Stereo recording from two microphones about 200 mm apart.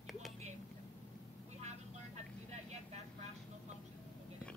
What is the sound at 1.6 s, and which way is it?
Vehicle, 35° right (ahead or behind).